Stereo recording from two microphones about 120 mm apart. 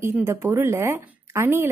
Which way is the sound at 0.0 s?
20° right (ahead or behind).